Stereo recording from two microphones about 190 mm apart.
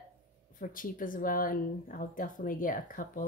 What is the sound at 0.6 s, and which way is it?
A woman's voice, 45° left (ahead or behind).